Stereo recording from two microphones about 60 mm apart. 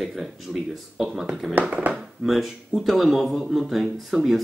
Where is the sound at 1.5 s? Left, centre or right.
Right.